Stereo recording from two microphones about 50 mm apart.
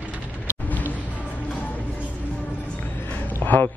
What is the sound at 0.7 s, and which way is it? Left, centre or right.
Music, left.